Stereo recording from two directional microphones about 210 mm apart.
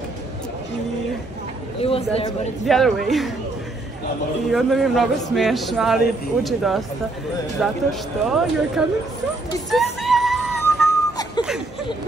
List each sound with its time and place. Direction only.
1.8 s a man's voice: 30° left (ahead or behind)
2.6 s a man's voice: centre (ahead or behind)
4.5 s a man's voice: centre (ahead or behind)
9.7 s music: centre (ahead or behind)